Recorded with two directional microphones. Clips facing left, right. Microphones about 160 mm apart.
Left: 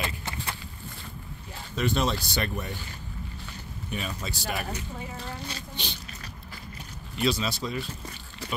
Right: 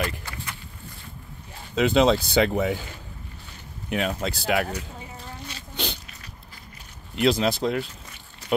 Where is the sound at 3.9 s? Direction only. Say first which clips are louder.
Right 8 dB; 75° right (ahead or behind).